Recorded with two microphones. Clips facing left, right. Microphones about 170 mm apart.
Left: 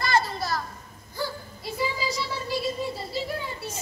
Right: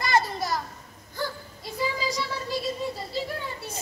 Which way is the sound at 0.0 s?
15° right (ahead or behind).